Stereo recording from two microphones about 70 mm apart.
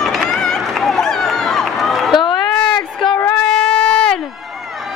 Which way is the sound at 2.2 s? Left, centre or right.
Left.